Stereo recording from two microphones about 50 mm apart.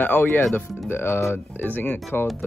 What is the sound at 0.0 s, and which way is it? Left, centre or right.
Speech, left.